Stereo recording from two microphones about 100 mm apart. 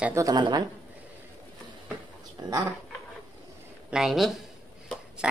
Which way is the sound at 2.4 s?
40° right (ahead or behind).